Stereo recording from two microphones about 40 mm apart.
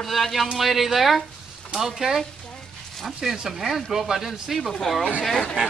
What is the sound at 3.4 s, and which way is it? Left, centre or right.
Speech, centre.